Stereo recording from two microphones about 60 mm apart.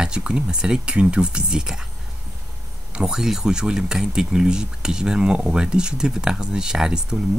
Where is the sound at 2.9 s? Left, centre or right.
Centre.